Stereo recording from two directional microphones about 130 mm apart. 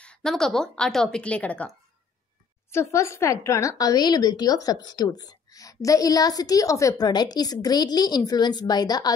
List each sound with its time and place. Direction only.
0.0 s a woman's voice: 5° left (ahead or behind)
2.7 s a woman's voice: 20° left (ahead or behind)